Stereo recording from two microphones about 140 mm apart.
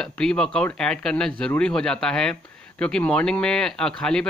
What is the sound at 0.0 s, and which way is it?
Speech, 5° left (ahead or behind).